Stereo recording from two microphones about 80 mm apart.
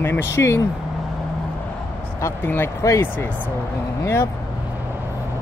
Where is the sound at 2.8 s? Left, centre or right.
Left.